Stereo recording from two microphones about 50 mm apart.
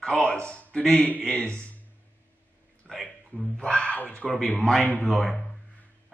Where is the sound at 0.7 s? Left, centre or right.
Centre.